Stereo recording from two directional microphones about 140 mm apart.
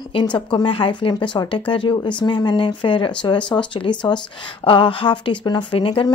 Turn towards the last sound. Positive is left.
turn(degrees=40)  # may be behind; listen again after turning